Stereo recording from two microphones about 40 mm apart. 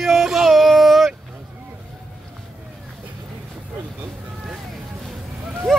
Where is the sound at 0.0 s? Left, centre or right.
Centre.